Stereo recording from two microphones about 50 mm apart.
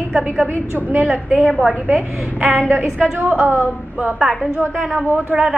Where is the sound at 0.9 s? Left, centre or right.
Right.